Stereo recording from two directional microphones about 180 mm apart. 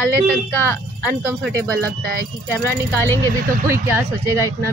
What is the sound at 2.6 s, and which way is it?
Speech, 15° left (ahead or behind).